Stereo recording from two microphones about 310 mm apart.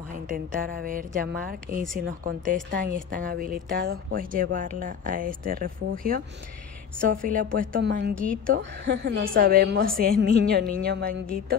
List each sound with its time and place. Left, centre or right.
0.3 s speech: right
7.2 s a woman's voice: right
8.1 s a woman's voice: centre
8.5 s a woman's voice: right